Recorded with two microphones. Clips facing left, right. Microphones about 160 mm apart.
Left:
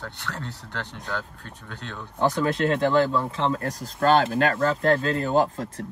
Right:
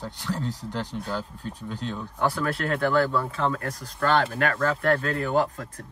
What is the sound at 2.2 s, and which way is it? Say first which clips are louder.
Speech: left 4 dB; 30° left (ahead or behind).